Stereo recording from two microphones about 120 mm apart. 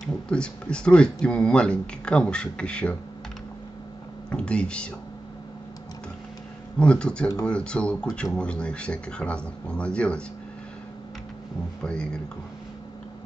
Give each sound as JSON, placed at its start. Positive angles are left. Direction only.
{"t": 0.0, "sound": "speech", "side_deg": 10}
{"t": 4.3, "sound": "speech", "side_deg": 10}
{"t": 6.8, "sound": "speech", "side_deg": 10}
{"t": 11.8, "sound": "speech", "side_deg": 10}